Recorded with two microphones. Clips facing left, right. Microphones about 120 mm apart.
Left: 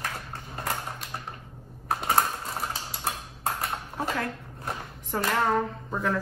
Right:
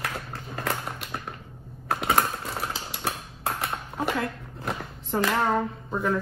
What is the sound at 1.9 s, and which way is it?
Typing, 85° right.